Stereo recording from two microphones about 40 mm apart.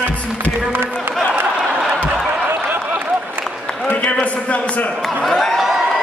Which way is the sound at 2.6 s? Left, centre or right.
Right.